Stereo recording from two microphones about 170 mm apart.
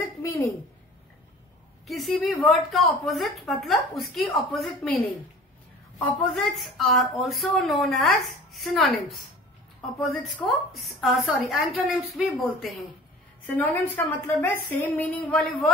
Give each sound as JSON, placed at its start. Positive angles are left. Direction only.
{"t": 0.2, "sound": "a sound", "side_deg": 20}
{"t": 1.9, "sound": "a woman's voice", "side_deg": 0}
{"t": 5.9, "sound": "a woman's voice", "side_deg": 0}
{"t": 13.6, "sound": "a woman's voice", "side_deg": 10}